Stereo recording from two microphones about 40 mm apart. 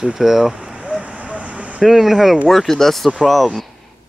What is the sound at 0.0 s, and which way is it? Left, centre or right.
Speech, centre.